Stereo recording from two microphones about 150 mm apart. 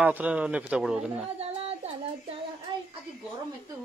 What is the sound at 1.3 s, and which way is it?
Speech, 45° right (ahead or behind).